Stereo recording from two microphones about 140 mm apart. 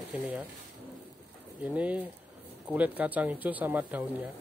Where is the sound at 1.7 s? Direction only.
10° right (ahead or behind).